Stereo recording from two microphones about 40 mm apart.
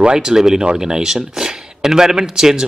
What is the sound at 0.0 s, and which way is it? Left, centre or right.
Speech, centre.